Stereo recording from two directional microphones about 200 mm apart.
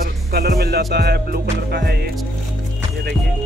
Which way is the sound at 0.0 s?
50° right (ahead or behind).